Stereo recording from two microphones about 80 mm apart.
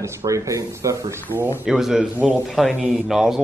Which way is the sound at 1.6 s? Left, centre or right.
Centre.